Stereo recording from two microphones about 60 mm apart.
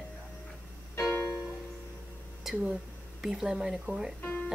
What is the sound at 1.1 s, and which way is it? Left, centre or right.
Music, left.